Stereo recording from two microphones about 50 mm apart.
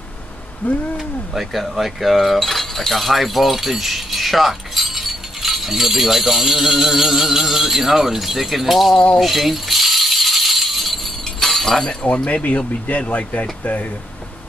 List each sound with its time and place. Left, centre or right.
0.6 s speech: left
0.9 s a sound: centre
9.2 s rattle: centre
12.3 s speech: left